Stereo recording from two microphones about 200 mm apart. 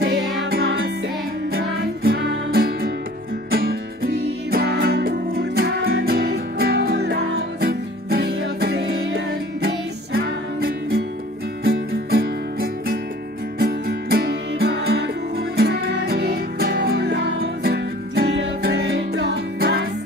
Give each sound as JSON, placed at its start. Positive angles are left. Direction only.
{"t": 0.5, "sound": "music", "side_deg": -50}
{"t": 2.0, "sound": "music", "side_deg": -50}